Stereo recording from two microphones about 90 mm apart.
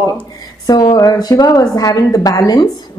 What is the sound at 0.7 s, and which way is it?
A woman's voice, 45° left (ahead or behind).